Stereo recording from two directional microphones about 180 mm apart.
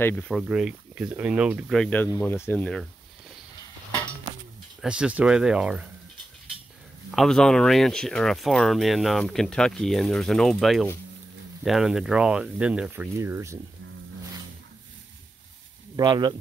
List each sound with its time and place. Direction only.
0.0 s speech: 5° left (ahead or behind)
1.8 s speech: 10° left (ahead or behind)
4.8 s speech: 5° right (ahead or behind)
7.1 s speech: 5° left (ahead or behind); by 13.6 s 15° right (ahead or behind)
16.0 s speech: 25° right (ahead or behind)